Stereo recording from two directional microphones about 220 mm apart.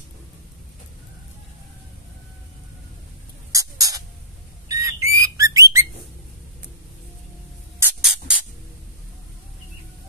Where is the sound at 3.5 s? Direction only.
15° right (ahead or behind).